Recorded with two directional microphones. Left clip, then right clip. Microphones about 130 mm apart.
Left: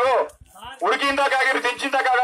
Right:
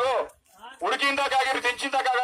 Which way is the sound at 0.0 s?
25° right (ahead or behind).